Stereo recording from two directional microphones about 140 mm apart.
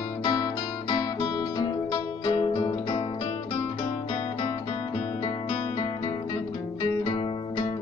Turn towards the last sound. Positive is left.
turn(degrees=30)  # may be behind; listen again after turning